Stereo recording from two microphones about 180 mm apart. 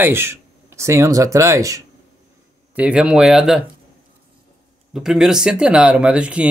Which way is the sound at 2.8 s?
5° right (ahead or behind).